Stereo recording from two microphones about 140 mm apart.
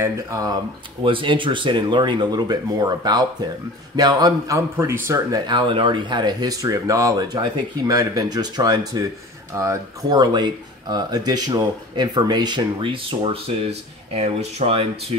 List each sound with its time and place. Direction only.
0.0 s speech: 25° right (ahead or behind)
1.0 s speech: 35° right (ahead or behind)